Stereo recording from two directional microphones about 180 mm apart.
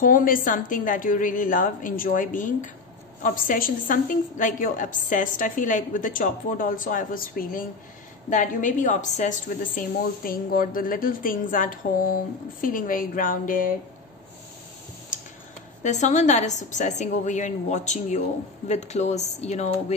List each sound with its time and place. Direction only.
0.0 s speech: 50° left (ahead or behind)
15.1 s tick-tock: 45° left (ahead or behind)
15.8 s a woman's voice: 40° left (ahead or behind)